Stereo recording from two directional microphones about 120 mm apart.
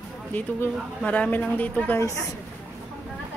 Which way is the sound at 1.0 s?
10° left (ahead or behind).